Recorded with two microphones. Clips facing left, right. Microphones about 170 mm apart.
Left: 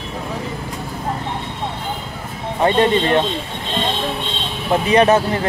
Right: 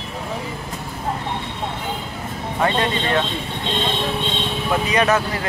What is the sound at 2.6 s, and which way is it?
Speech, 30° left (ahead or behind).